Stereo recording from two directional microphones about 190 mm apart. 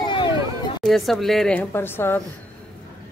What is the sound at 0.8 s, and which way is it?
A woman's voice, centre (ahead or behind).